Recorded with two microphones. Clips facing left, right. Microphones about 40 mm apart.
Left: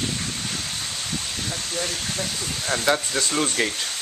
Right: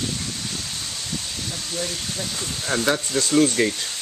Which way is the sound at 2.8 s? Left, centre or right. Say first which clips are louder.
Even; centre.